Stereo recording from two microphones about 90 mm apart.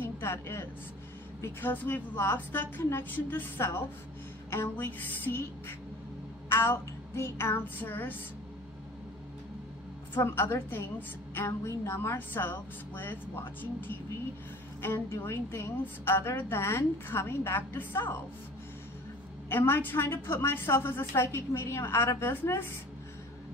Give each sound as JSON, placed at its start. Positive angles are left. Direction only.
{"t": 0.0, "sound": "a woman's voice", "side_deg": 25}
{"t": 10.2, "sound": "a woman's voice", "side_deg": 25}
{"t": 19.5, "sound": "a woman's voice", "side_deg": 25}